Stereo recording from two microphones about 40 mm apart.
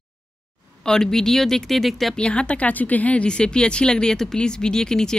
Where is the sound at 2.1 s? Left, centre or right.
Left.